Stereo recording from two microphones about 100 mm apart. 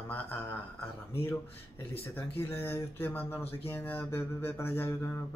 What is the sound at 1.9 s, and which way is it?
Speech, 20° left (ahead or behind).